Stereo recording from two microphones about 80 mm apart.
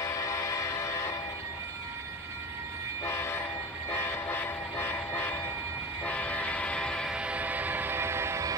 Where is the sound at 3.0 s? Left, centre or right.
Left; by 7.1 s centre.